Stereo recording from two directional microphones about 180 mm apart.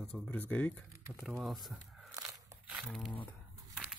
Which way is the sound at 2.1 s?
20° right (ahead or behind).